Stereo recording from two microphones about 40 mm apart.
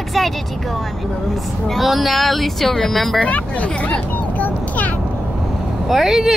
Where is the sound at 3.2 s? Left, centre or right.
Left.